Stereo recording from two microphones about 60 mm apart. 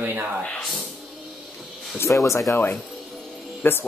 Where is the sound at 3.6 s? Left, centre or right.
Left.